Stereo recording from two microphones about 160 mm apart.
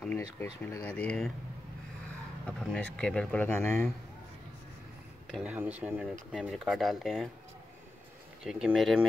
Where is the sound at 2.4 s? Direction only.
5° left (ahead or behind).